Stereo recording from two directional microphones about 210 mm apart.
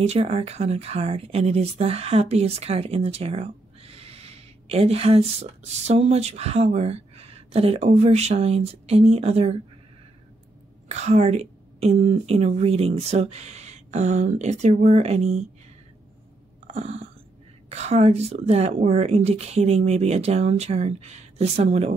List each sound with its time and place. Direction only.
0.0 s speech: 30° right (ahead or behind)
10.9 s a woman's voice: 30° right (ahead or behind)
16.6 s a sound: 30° right (ahead or behind)
17.6 s a woman's voice: 30° right (ahead or behind)